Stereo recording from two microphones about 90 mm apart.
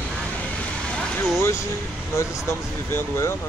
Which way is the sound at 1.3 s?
30° left (ahead or behind).